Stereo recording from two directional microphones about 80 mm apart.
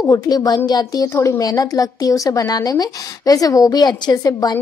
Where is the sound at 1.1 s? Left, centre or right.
Left.